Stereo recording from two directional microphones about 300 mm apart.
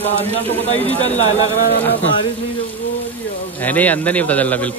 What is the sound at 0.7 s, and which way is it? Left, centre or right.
Speech, centre.